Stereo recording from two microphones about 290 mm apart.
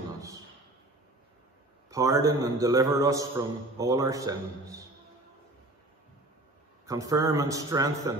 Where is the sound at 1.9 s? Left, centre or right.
Centre.